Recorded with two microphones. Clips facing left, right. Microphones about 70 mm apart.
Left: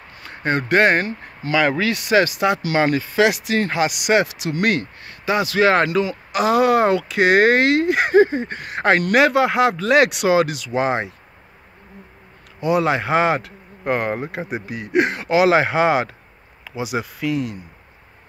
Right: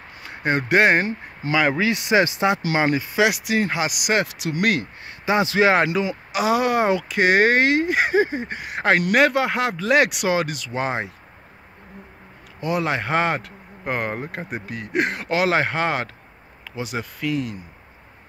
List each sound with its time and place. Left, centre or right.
0.2 s speech: centre
5.0 s a man's voice: right
6.3 s speech: centre
12.5 s speech: centre